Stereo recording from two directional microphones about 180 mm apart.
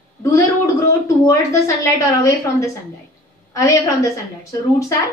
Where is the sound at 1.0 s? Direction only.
15° left (ahead or behind).